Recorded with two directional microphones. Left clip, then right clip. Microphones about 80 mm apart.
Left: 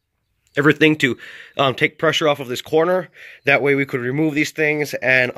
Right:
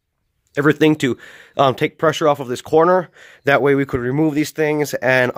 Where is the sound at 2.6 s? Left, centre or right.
Right.